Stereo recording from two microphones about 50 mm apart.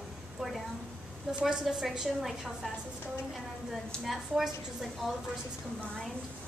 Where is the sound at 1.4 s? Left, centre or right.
Centre.